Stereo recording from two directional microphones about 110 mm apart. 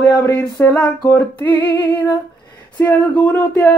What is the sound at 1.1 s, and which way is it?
Music, 20° left (ahead or behind).